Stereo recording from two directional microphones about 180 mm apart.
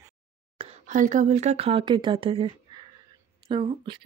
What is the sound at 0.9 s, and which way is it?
Speech, 45° right (ahead or behind).